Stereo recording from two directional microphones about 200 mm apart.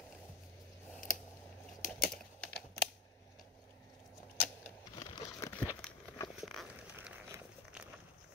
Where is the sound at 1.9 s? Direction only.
5° left (ahead or behind).